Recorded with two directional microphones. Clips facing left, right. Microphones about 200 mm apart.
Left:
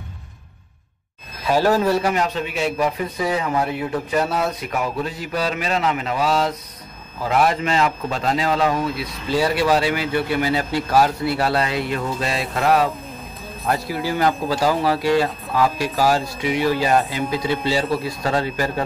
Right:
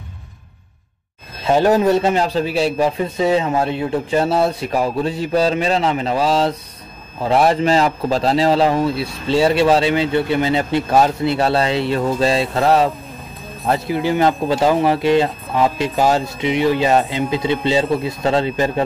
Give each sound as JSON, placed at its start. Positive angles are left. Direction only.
{"t": 1.4, "sound": "a man's voice", "side_deg": -20}